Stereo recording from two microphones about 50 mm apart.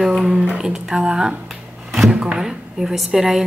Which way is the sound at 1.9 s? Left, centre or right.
Centre.